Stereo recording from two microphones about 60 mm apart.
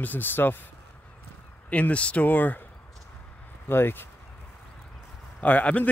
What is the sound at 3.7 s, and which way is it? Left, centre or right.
Speech, left.